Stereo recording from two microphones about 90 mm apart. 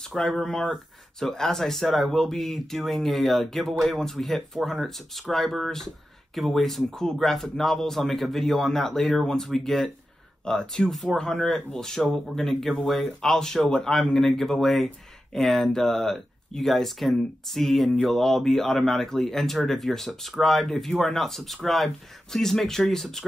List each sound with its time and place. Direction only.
0.1 s speech: 5° left (ahead or behind)